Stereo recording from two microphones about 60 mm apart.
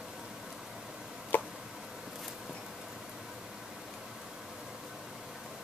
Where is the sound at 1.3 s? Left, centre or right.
Left.